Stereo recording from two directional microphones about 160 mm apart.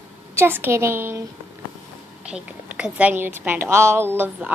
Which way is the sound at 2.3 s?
5° right (ahead or behind).